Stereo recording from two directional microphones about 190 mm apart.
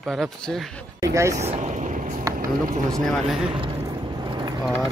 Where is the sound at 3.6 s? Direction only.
25° right (ahead or behind).